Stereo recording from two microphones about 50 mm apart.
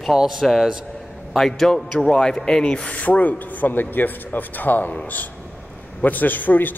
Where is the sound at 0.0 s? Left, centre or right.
Centre.